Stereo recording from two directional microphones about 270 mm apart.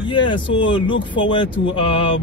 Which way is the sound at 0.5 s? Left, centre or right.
Centre.